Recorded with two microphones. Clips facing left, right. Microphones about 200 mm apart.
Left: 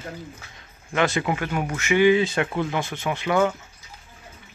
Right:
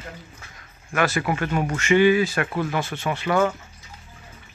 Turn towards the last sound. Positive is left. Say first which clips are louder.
# even
turn(degrees=15)  # may be behind; listen again after turning